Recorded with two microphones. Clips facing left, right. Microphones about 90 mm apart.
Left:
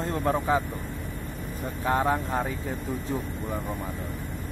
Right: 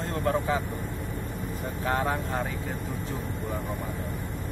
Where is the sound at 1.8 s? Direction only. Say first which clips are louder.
Left 3 dB; 20° left (ahead or behind).